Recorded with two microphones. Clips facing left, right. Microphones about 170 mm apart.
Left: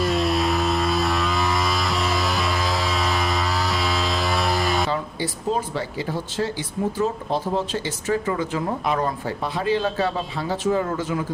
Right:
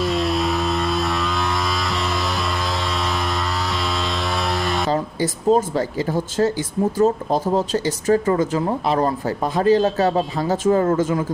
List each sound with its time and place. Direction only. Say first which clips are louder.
0.0 s vehicle: right 1 dB; centre (ahead or behind)
4.9 s a man's voice: right 5 dB; 40° right (ahead or behind)